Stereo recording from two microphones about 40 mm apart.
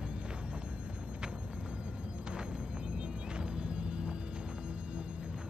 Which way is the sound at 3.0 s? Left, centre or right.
Right.